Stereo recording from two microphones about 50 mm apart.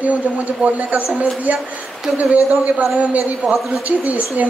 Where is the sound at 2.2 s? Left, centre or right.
Right.